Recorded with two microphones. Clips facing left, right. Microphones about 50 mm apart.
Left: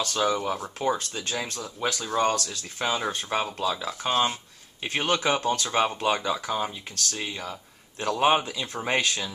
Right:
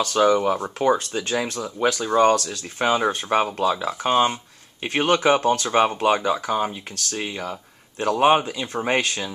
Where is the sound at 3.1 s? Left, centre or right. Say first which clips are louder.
Right 7 dB; right.